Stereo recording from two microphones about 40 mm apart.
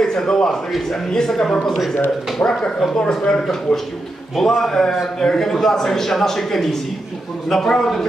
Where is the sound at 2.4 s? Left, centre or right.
Left.